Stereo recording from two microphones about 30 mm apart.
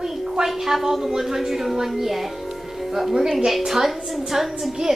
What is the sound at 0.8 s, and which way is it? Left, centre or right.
Music, centre.